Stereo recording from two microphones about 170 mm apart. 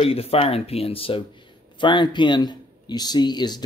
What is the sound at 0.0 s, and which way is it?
Speech, 35° left (ahead or behind).